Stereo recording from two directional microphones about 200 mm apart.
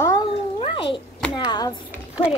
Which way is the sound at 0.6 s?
25° left (ahead or behind).